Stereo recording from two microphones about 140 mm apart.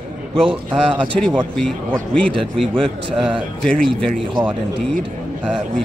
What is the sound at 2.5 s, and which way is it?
Speech, centre (ahead or behind).